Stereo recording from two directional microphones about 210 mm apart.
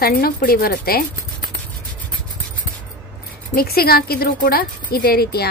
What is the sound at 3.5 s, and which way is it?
A woman's voice, 45° left (ahead or behind).